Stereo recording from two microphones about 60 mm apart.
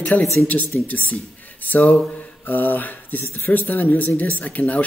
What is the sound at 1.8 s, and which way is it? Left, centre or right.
Speech, centre.